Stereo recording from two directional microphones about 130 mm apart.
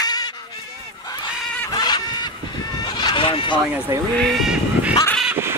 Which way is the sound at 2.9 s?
40° left (ahead or behind).